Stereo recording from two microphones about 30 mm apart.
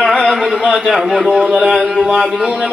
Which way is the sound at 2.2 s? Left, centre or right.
Centre.